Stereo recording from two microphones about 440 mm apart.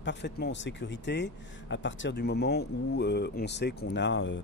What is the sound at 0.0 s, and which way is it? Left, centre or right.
Speech, left.